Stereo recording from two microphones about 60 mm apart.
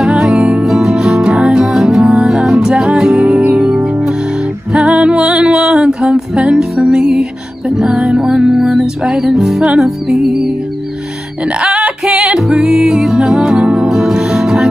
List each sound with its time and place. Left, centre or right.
0.2 s music: centre
11.6 s music: right
12.0 s music: centre
13.8 s music: centre